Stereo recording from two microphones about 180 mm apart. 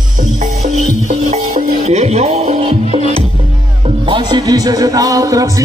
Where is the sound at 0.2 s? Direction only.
45° right (ahead or behind).